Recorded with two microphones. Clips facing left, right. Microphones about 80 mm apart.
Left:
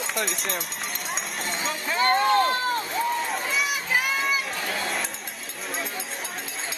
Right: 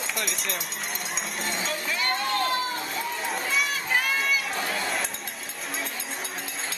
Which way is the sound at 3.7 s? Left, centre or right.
Centre.